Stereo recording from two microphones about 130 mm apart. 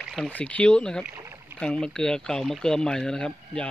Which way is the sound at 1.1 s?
20° right (ahead or behind).